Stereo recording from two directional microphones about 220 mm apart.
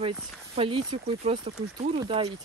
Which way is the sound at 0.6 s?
25° right (ahead or behind).